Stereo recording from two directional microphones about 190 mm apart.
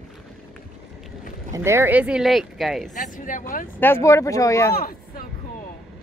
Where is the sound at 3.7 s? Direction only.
10° left (ahead or behind).